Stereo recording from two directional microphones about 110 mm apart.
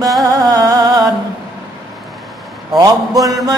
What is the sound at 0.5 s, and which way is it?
Music, 35° right (ahead or behind).